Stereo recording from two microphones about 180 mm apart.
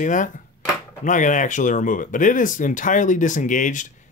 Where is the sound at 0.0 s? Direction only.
45° left (ahead or behind).